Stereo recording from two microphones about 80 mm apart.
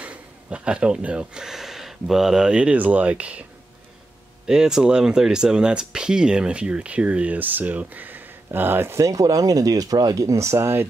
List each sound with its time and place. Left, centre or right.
0.0 s speech: centre
4.5 s speech: centre; by 10.9 s right